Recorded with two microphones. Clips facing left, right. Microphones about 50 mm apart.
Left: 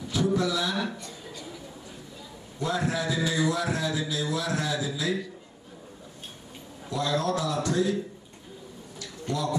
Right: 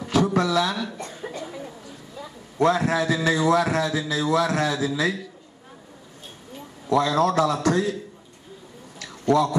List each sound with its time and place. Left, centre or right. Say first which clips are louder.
0.0 s a sound: right 5 dB; right
0.9 s chuckle: right 7 dB; right
2.8 s a man's voice: right 5 dB; right
6.9 s a man's voice: right 7 dB; right
9.3 s a man's voice: right 9 dB; right